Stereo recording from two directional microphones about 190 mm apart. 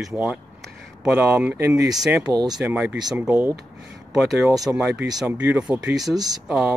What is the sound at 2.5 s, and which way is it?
Speech, 5° right (ahead or behind).